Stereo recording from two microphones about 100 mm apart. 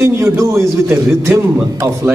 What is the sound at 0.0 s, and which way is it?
A man's voice, 30° right (ahead or behind).